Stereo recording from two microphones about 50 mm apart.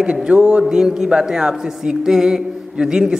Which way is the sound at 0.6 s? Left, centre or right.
Centre.